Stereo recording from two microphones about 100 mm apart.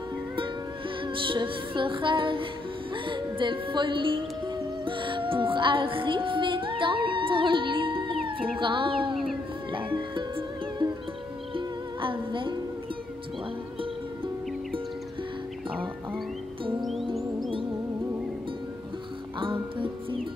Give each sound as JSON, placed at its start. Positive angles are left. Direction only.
{"t": 1.0, "sound": "music", "side_deg": -60}
{"t": 4.8, "sound": "speech", "side_deg": -55}
{"t": 9.1, "sound": "a sound", "side_deg": 0}
{"t": 9.7, "sound": "music", "side_deg": -55}
{"t": 19.4, "sound": "music", "side_deg": -60}